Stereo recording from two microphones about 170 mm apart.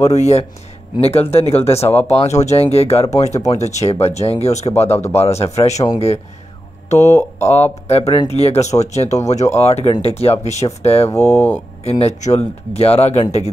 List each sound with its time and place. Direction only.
0.0 s speech: 40° left (ahead or behind)
6.9 s speech: 40° left (ahead or behind)
11.2 s speech: 10° left (ahead or behind)
11.8 s speech: 40° left (ahead or behind)